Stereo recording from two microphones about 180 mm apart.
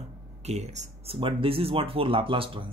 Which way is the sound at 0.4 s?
40° right (ahead or behind).